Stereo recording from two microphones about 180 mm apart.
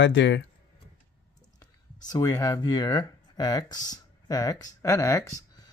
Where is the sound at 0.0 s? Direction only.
85° left.